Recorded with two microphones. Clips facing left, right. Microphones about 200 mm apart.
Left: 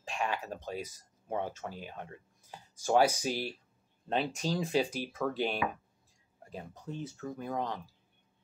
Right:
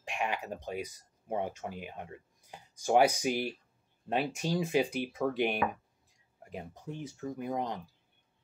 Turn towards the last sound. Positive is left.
turn(degrees=-15)  # may be behind; listen again after turning